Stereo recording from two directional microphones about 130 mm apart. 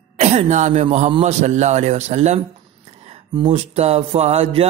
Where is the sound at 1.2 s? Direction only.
60° right (ahead or behind).